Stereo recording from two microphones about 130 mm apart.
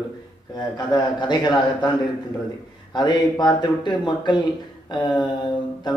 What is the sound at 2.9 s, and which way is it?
A man's voice, 35° left (ahead or behind).